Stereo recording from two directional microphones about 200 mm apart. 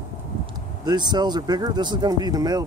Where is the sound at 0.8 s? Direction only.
20° right (ahead or behind).